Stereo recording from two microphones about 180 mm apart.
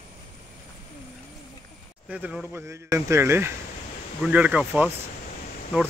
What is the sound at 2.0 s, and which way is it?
Speech, 5° right (ahead or behind).